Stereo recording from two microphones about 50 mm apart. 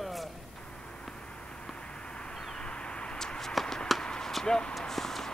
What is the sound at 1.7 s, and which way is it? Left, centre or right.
Vehicle, centre.